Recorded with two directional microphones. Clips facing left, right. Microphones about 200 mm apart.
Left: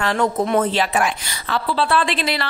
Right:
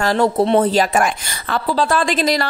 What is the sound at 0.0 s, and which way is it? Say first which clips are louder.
A woman's voice: right 4 dB; 35° right (ahead or behind).